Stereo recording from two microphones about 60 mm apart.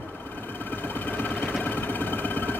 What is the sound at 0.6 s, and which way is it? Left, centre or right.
Sewing machine, left.